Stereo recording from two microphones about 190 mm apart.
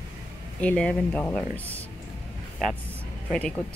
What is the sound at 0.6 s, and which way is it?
Speech, 5° left (ahead or behind).